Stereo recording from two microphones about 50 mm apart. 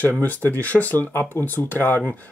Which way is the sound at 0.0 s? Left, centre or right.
Left.